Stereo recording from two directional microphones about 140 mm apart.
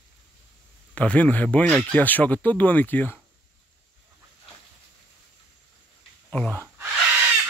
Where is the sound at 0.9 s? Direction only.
10° left (ahead or behind).